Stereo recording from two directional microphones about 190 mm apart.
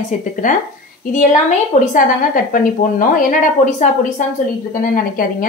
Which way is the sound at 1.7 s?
40° left (ahead or behind).